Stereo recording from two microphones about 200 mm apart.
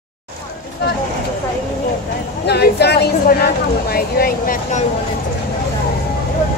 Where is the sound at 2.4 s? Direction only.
55° left (ahead or behind).